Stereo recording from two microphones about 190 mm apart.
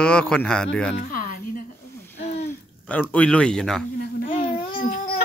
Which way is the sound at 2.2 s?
35° left (ahead or behind).